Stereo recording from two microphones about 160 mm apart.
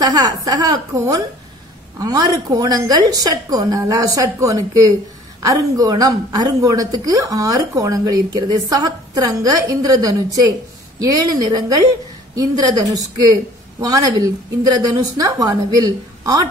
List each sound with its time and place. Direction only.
0.0 s a woman's voice: 25° right (ahead or behind)